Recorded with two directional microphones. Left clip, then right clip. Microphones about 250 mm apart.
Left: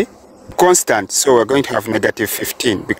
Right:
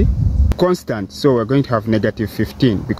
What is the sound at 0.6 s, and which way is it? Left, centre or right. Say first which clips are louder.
Speech: left 6 dB; left.